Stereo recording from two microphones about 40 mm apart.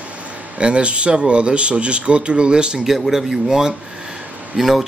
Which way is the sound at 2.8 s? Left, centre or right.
Centre.